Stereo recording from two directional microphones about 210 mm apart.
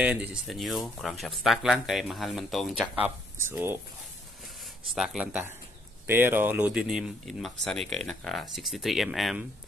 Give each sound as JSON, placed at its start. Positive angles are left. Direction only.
{"t": 0.0, "sound": "speech", "side_deg": -5}
{"t": 3.3, "sound": "speech", "side_deg": -10}
{"t": 4.9, "sound": "speech", "side_deg": -5}